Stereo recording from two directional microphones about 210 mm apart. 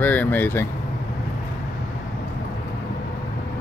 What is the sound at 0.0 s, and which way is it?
Speech, 10° left (ahead or behind).